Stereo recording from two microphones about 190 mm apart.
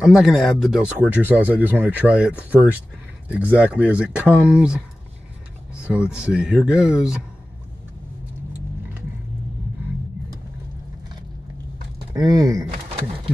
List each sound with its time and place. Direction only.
0.0 s speech: centre (ahead or behind)
5.9 s speech: 5° right (ahead or behind)
12.1 s speech: 20° right (ahead or behind)